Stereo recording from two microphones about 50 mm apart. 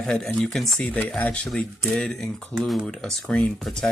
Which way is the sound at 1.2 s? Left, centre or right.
Left.